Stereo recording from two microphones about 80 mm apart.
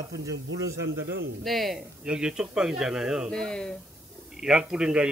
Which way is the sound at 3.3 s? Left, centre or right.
Centre.